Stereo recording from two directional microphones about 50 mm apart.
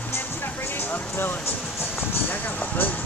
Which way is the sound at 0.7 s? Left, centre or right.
Left.